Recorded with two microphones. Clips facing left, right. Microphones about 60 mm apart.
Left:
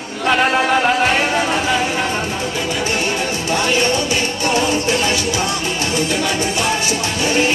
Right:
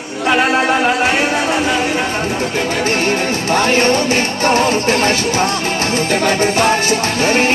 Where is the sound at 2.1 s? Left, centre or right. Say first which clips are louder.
Right 3 dB; right.